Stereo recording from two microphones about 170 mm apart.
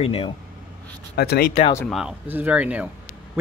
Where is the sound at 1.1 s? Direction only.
65° left (ahead or behind).